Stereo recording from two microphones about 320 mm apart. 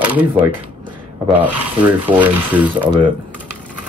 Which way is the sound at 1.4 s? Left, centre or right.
Centre.